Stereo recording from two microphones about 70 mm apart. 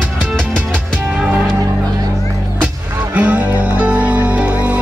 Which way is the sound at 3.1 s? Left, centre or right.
Centre.